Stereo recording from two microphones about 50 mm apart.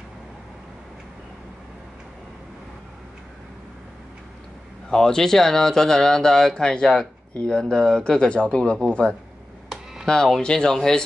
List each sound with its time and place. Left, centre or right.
4.8 s speech: centre